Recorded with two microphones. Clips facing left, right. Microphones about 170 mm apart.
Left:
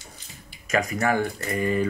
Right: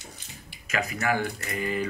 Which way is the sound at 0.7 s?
40° left (ahead or behind).